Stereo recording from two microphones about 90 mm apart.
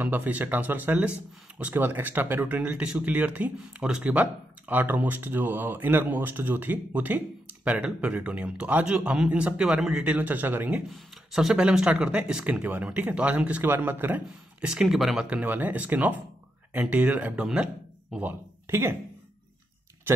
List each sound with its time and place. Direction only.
0.0 s a man's voice: 20° right (ahead or behind)
11.0 s a man's voice: 5° right (ahead or behind)
14.7 s speech: 5° right (ahead or behind)
15.2 s speech: 15° right (ahead or behind)